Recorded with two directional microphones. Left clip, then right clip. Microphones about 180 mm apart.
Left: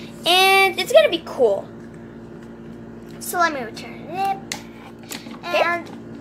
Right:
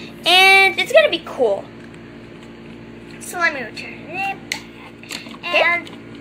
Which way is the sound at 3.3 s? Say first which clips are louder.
Even; 50° left (ahead or behind).